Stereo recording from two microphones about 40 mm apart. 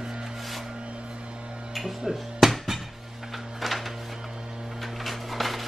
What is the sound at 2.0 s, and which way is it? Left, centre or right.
Music, centre.